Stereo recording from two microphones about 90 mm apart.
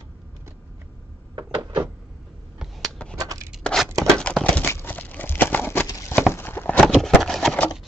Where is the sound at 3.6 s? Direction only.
5° left (ahead or behind); by 5.8 s 25° left (ahead or behind).